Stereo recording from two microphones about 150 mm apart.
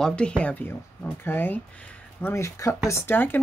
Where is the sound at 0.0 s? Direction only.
5° left (ahead or behind).